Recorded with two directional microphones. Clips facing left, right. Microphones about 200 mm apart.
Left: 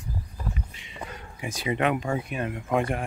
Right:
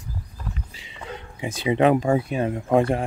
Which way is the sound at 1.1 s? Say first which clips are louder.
Right 7 dB; 25° right (ahead or behind).